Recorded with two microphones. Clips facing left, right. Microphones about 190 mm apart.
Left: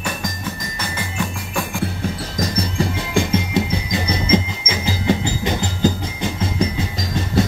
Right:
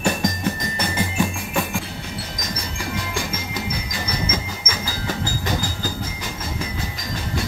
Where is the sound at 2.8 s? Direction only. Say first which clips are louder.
Left 7 dB; 25° left (ahead or behind).